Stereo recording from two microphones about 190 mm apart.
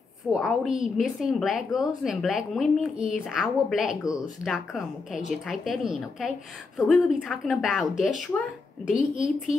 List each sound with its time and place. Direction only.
0.3 s a woman's voice: centre (ahead or behind)